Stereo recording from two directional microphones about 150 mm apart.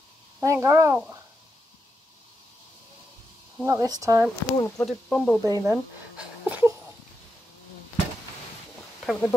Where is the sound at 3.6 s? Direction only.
20° right (ahead or behind).